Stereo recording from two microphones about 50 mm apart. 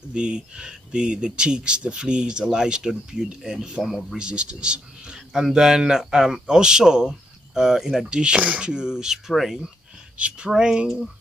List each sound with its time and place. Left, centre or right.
0.1 s speech: centre
4.2 s speech: centre
8.1 s speech: centre
9.3 s speech: centre
10.1 s speech: right